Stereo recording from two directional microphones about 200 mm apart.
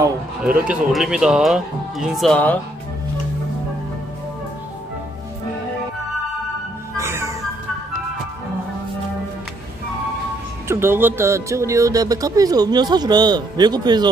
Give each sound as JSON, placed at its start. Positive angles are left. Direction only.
{"t": 0.5, "sound": "speech", "side_deg": -5}
{"t": 7.0, "sound": "music", "side_deg": -15}
{"t": 10.7, "sound": "speech", "side_deg": -10}